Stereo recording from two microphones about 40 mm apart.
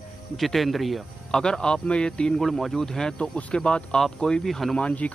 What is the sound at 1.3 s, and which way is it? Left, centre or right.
Speech, centre.